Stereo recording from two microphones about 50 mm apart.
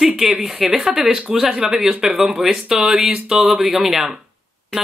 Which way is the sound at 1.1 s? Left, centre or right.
Centre.